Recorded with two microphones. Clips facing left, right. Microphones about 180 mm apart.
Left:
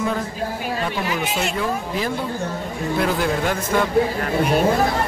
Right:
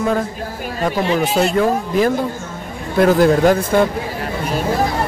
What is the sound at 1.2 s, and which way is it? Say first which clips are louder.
Speech: right 8 dB; 40° right (ahead or behind).